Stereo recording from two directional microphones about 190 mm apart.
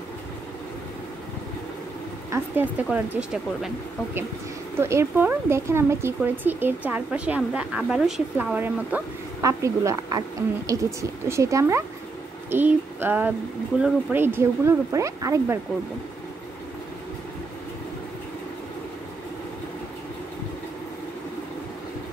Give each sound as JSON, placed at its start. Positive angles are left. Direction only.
{"t": 2.3, "sound": "speech", "side_deg": -10}
{"t": 12.4, "sound": "a sound", "side_deg": -10}
{"t": 13.7, "sound": "speech", "side_deg": -10}